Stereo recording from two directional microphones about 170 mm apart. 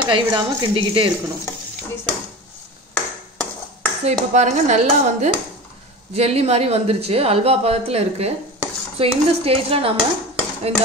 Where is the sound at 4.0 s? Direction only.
40° right (ahead or behind).